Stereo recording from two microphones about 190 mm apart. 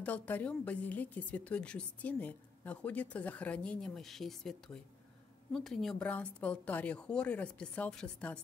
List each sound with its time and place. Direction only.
0.0 s a woman's voice: 10° left (ahead or behind)